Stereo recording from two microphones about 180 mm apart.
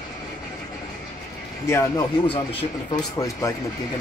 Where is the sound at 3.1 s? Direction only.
15° left (ahead or behind).